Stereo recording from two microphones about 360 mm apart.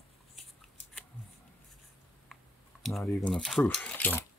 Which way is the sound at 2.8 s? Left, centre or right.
Centre.